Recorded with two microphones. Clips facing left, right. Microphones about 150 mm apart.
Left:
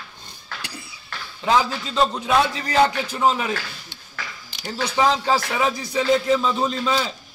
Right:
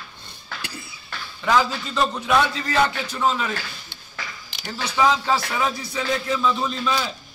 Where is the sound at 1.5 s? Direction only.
25° left (ahead or behind).